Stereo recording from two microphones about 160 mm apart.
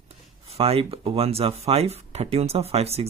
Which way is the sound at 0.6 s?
35° right (ahead or behind).